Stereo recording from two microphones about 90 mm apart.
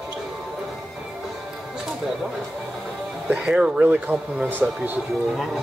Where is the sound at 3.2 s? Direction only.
10° right (ahead or behind).